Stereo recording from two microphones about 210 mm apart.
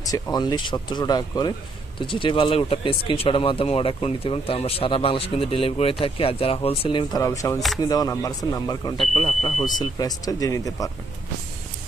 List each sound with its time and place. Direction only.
0.0 s speech: 20° left (ahead or behind)